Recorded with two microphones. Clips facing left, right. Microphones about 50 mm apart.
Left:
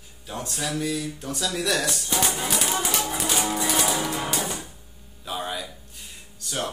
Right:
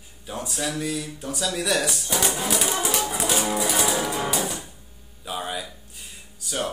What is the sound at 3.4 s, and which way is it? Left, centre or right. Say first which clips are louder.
Music: even; centre.